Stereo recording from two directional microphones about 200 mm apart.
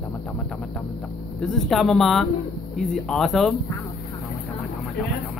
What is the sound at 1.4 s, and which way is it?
Speech, centre (ahead or behind).